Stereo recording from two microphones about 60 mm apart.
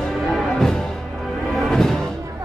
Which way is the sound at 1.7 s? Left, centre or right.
Centre.